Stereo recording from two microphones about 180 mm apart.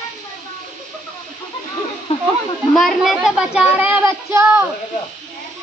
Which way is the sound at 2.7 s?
Centre (ahead or behind).